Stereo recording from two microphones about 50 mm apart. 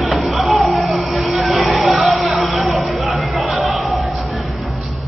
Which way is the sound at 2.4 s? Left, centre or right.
Centre.